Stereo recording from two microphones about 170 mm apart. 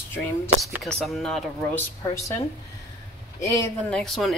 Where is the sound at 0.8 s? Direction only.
Centre (ahead or behind).